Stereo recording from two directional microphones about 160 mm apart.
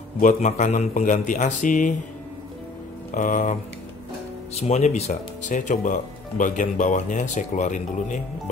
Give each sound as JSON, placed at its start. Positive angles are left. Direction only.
{"t": 0.2, "sound": "speech", "side_deg": 50}
{"t": 3.2, "sound": "speech", "side_deg": 55}
{"t": 4.6, "sound": "speech", "side_deg": 45}